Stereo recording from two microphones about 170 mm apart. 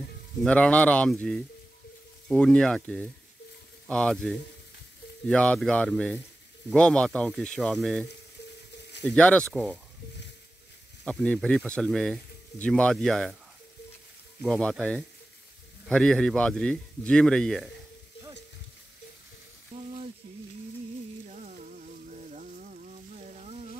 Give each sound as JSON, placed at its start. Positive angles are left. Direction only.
{"t": 0.4, "sound": "speech", "side_deg": 5}
{"t": 11.1, "sound": "speech", "side_deg": 5}
{"t": 14.4, "sound": "speech", "side_deg": 5}
{"t": 15.9, "sound": "speech", "side_deg": 5}
{"t": 19.7, "sound": "frying", "side_deg": -35}
{"t": 21.3, "sound": "a sound", "side_deg": -45}